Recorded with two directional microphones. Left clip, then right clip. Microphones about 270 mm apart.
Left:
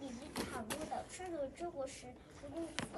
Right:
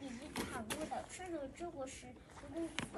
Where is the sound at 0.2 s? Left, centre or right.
Centre.